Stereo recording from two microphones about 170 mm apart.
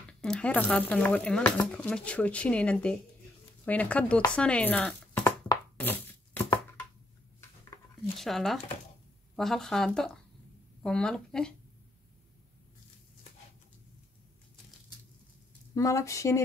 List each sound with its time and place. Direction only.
0.2 s speech: 5° left (ahead or behind)
5.8 s chopping: 10° left (ahead or behind)
8.2 s speech: centre (ahead or behind)
15.7 s speech: 20° left (ahead or behind)